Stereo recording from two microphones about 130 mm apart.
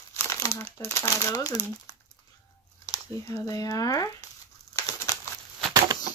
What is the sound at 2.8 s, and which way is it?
Speech, 25° left (ahead or behind).